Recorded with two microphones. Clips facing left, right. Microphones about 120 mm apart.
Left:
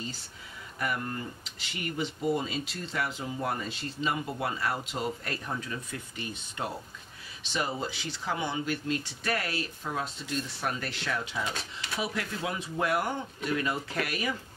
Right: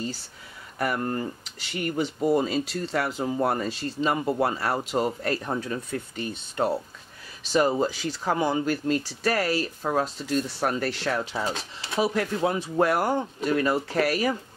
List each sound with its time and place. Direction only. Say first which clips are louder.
0.7 s speech: right 6 dB; 45° right (ahead or behind)
2.3 s speech: right 8 dB; 45° right (ahead or behind)